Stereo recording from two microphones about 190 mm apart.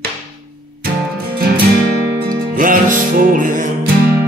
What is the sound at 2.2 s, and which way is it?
Music, 45° right (ahead or behind).